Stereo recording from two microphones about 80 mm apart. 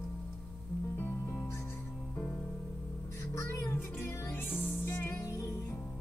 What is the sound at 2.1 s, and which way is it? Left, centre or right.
Music, left.